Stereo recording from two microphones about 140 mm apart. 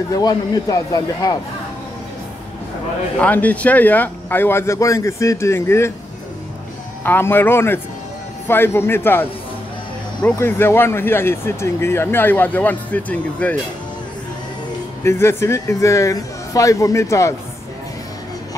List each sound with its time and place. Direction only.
0.1 s speech: 25° left (ahead or behind)
3.2 s speech: 10° left (ahead or behind)
7.0 s speech: 15° left (ahead or behind)
15.0 s speech: 20° left (ahead or behind)